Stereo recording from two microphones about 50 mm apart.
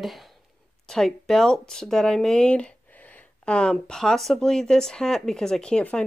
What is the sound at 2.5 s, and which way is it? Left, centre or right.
Speech, left.